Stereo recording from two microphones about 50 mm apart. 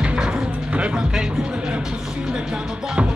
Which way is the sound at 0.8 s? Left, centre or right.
Right.